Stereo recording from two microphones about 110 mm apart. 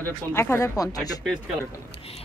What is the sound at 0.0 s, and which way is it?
Speech, 20° left (ahead or behind).